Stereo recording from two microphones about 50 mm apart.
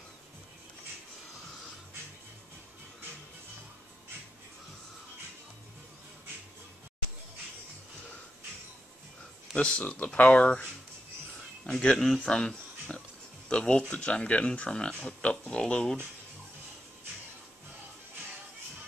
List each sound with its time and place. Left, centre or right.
9.6 s speech: left